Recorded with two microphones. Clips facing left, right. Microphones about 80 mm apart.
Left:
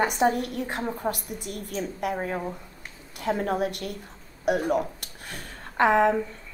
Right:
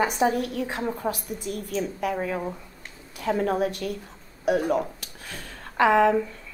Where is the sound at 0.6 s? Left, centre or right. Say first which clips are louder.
Right 1 dB; centre.